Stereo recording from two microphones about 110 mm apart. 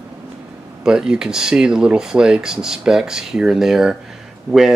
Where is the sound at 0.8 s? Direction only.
5° right (ahead or behind).